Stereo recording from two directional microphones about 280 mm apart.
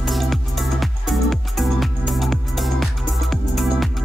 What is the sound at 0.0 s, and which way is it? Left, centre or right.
Music, centre.